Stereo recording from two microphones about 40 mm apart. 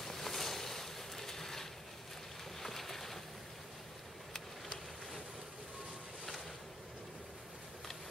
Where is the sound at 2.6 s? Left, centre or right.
Centre.